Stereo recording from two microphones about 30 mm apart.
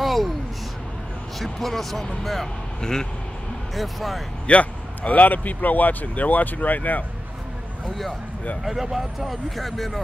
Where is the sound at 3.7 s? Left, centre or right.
Centre.